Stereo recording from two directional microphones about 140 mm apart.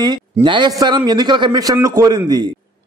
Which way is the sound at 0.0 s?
30° right (ahead or behind).